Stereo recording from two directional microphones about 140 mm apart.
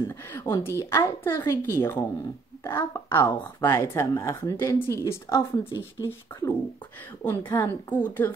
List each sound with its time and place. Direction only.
0.0 s a woman's voice: 20° left (ahead or behind)